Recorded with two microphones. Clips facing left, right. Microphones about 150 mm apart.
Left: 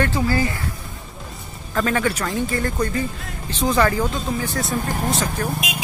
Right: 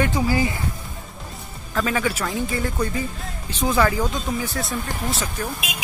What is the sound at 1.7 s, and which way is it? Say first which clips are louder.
Speech: left 2 dB; centre (ahead or behind).